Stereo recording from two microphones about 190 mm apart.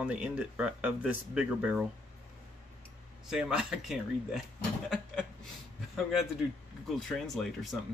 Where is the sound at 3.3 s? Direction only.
5° right (ahead or behind).